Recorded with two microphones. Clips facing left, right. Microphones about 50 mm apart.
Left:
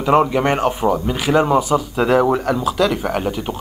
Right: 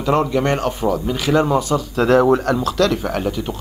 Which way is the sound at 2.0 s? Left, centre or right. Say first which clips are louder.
Right 3 dB; centre.